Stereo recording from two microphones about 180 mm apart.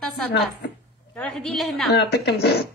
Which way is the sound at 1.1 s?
5° left (ahead or behind).